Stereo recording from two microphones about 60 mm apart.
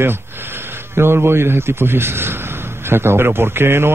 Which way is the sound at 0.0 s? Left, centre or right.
Right.